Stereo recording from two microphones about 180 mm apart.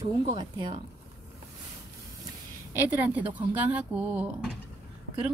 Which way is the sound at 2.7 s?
10° right (ahead or behind).